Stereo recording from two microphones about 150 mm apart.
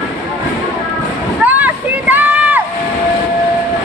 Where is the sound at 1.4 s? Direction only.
10° right (ahead or behind).